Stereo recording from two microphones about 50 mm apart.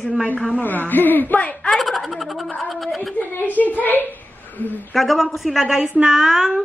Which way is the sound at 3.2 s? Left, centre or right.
Left.